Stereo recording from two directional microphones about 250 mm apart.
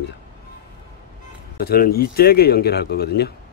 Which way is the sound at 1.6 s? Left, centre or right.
Left.